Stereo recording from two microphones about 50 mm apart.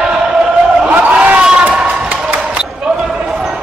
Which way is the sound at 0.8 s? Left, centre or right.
Right.